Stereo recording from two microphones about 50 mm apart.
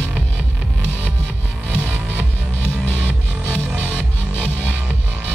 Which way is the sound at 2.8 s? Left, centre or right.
Left.